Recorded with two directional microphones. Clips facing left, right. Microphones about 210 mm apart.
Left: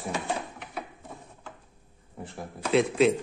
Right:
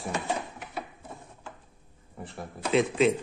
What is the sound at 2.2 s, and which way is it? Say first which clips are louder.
Speech: even; centre (ahead or behind).